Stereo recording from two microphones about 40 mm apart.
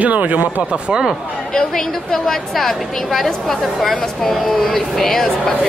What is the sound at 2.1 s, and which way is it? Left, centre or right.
Speech, centre.